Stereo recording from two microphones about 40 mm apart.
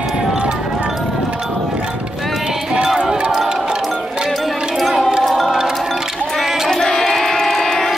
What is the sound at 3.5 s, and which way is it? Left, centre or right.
Music, centre.